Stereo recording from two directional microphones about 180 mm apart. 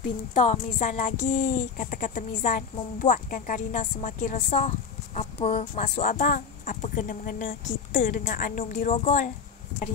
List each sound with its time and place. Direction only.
0.3 s speech: 45° left (ahead or behind)